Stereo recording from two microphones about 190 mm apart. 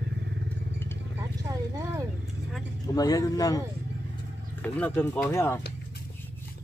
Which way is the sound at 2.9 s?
20° left (ahead or behind).